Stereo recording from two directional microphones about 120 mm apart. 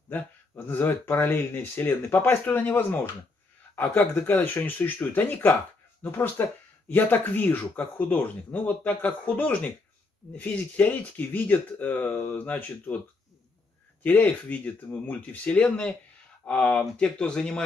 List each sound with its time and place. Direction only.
0.7 s speech: 15° left (ahead or behind)
14.0 s speech: 10° left (ahead or behind)